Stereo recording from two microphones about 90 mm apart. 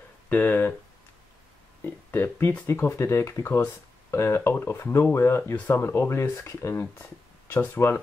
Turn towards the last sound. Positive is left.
turn(degrees=25)  # may be behind; listen again after turning